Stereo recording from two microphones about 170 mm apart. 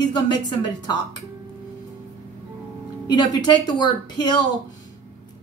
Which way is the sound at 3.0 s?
25° left (ahead or behind).